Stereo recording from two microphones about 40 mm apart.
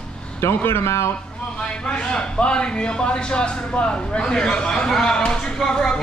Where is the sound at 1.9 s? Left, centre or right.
Left.